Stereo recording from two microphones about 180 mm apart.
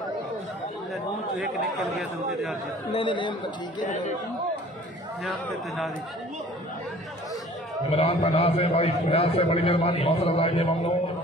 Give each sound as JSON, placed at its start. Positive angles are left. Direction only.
{"t": 1.4, "sound": "speech", "side_deg": 0}
{"t": 2.9, "sound": "speech", "side_deg": 30}
{"t": 3.8, "sound": "speech", "side_deg": 45}
{"t": 7.9, "sound": "a man's voice", "side_deg": 35}